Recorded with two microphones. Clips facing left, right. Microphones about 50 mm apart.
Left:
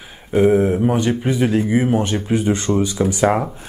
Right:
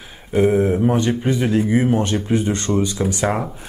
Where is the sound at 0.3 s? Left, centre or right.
Centre.